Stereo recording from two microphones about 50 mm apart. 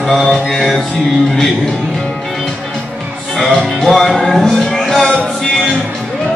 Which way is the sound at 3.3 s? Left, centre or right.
Centre.